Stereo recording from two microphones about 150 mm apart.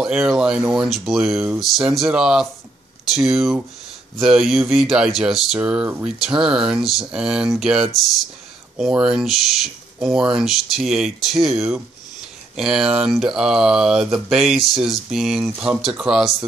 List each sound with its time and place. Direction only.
0.0 s speech: 5° right (ahead or behind)